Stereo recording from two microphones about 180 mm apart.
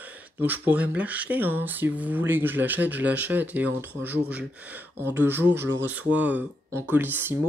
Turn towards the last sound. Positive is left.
turn(degrees=-10)  # may be behind; listen again after turning